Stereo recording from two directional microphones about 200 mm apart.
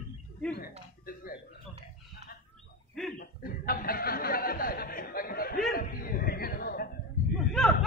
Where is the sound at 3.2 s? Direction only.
45° left (ahead or behind).